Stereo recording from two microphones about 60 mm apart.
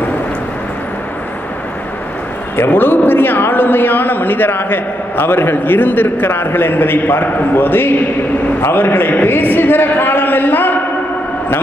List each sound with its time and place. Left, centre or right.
2.5 s a man's voice: left